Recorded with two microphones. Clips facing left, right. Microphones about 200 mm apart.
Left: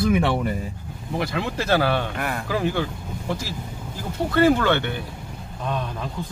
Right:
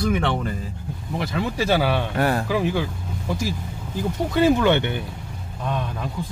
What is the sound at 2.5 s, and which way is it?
Speech, 5° right (ahead or behind).